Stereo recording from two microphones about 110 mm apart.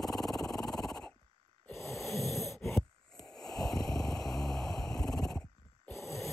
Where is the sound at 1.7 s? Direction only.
25° left (ahead or behind).